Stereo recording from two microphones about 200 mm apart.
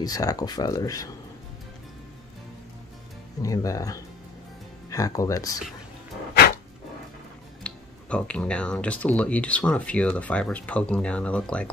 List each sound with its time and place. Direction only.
0.0 s speech: 20° left (ahead or behind)
3.4 s speech: 15° left (ahead or behind)
7.6 s speech: 5° left (ahead or behind)